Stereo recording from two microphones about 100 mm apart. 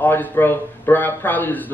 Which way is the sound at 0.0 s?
20° left (ahead or behind).